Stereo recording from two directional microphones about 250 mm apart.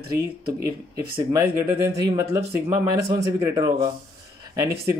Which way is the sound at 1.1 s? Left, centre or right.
Centre.